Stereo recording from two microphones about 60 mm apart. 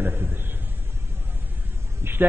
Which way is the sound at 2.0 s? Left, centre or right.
Right.